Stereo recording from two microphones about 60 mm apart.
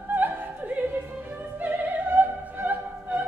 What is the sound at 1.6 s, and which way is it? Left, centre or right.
Opera, right.